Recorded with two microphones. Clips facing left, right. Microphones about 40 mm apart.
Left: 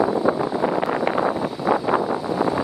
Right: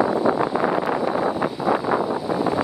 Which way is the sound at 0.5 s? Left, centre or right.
Right.